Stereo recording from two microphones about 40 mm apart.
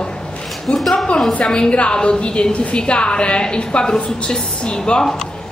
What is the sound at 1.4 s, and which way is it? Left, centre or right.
A woman's voice, left.